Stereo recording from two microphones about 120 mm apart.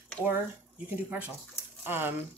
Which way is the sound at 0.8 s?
15° right (ahead or behind).